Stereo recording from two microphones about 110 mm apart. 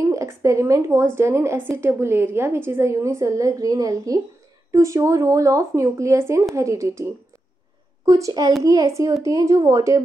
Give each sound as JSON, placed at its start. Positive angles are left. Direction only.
{"t": 0.0, "sound": "a woman's voice", "side_deg": -30}